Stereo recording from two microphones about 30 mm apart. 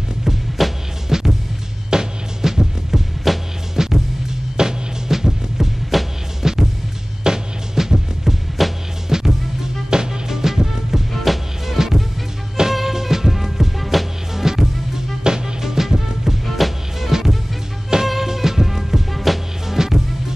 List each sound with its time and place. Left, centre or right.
0.6 s music: centre
1.0 s music: centre
3.3 s music: centre
3.7 s music: centre
5.9 s music: centre
6.4 s music: centre
8.6 s music: centre
9.1 s music: centre
14.3 s music: centre
16.4 s music: centre
19.8 s music: centre